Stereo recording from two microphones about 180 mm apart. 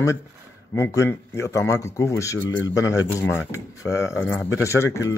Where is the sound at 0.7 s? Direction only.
15° left (ahead or behind).